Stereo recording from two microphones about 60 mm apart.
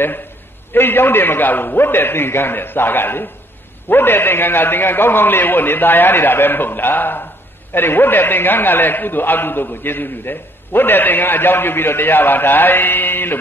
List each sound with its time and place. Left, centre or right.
0.7 s a man's voice: left